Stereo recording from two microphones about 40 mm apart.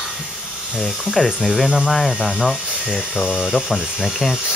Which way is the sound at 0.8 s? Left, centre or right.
Centre.